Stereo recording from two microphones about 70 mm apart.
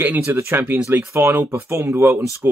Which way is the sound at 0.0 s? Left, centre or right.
Right.